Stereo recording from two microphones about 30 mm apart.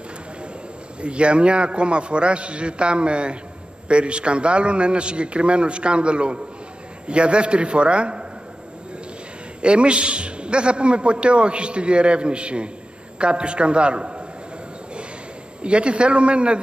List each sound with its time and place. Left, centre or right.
1.0 s a man's voice: right
9.6 s a man's voice: right
15.6 s a man's voice: right